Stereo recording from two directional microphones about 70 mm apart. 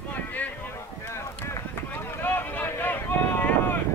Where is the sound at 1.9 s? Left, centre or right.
Left.